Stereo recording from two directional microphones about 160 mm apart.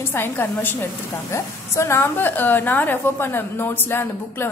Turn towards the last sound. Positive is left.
turn(degrees=15)  # may be behind; listen again after turning